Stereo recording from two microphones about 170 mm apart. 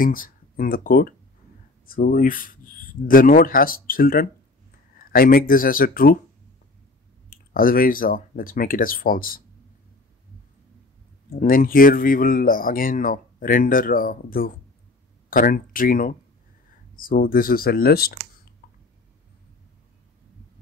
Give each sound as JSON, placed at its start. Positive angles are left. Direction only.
{"t": 0.0, "sound": "speech", "side_deg": 55}
{"t": 7.2, "sound": "speech", "side_deg": 55}
{"t": 11.2, "sound": "speech", "side_deg": 55}